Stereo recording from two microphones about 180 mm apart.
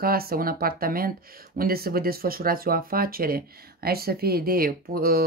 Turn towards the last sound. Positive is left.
turn(degrees=-55)  # may be behind; listen again after turning